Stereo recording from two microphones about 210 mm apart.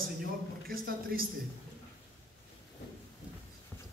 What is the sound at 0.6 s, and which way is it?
Speech, 45° right (ahead or behind).